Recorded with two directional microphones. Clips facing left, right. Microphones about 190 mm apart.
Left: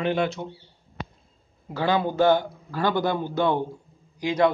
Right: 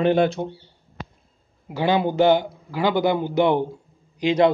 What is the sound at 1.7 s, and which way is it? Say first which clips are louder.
A man's voice: right 3 dB; 15° right (ahead or behind).